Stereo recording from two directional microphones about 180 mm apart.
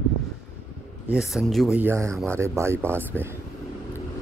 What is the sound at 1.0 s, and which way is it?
Speech, 5° right (ahead or behind).